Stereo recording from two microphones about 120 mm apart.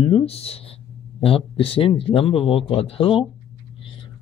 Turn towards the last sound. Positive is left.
turn(degrees=50)  # may be behind; listen again after turning